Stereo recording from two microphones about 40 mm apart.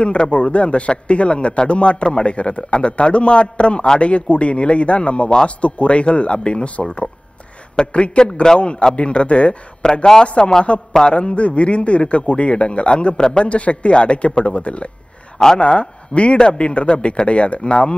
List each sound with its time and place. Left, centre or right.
0.0 s a man's voice: left
13.5 s a man's voice: left
15.3 s a man's voice: centre